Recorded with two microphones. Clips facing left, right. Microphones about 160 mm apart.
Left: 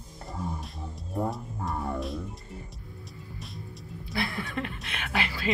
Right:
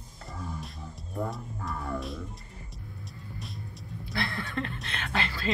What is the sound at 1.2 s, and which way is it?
Speech, centre (ahead or behind).